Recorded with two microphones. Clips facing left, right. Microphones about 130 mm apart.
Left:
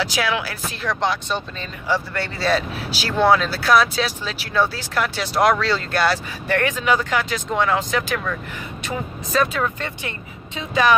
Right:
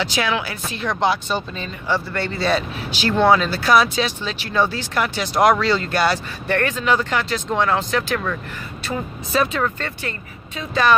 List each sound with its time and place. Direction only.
0.0 s speech: 10° left (ahead or behind)
6.4 s speech: 10° left (ahead or behind)
9.3 s speech: centre (ahead or behind)
9.8 s speech: 15° left (ahead or behind)